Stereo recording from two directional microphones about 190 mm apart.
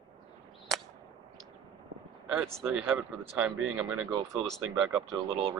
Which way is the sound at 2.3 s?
5° right (ahead or behind).